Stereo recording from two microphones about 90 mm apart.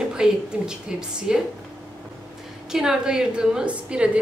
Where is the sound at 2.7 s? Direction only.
5° right (ahead or behind).